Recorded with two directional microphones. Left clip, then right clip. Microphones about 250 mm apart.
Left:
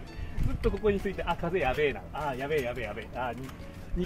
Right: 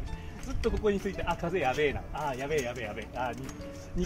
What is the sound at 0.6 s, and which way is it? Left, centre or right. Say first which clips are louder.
Speech: left 1 dB; centre.